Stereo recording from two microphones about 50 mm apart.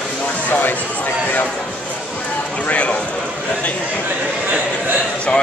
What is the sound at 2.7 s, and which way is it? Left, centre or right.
Speech, left.